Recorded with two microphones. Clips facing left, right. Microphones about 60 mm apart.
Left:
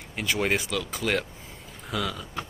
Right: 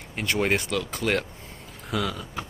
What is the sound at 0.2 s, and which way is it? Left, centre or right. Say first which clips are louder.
Speech: right 2 dB; centre.